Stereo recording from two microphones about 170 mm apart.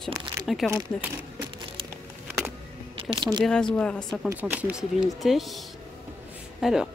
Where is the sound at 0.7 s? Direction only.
20° right (ahead or behind).